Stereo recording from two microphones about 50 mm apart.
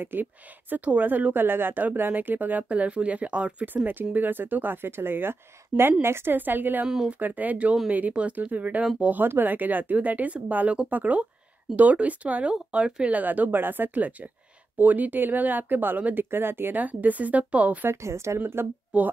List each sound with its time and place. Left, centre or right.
0.0 s speech: right
3.6 s a woman's voice: right
6.3 s speech: right
12.5 s speech: centre
13.2 s speech: right
16.3 s speech: right
16.7 s speech: right
18.0 s a woman's voice: right
18.9 s speech: right